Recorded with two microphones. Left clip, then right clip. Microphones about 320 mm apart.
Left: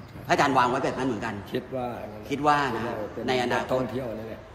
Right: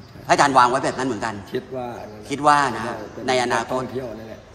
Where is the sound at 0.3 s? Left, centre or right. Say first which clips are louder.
Right 7 dB; right.